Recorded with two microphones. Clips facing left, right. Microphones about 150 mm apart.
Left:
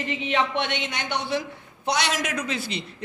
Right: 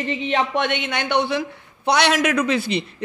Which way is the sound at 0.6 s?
55° right (ahead or behind).